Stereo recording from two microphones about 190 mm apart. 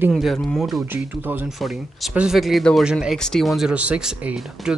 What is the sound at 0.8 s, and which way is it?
Speech, 10° right (ahead or behind).